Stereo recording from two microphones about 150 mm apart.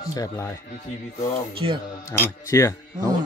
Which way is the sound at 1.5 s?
35° right (ahead or behind).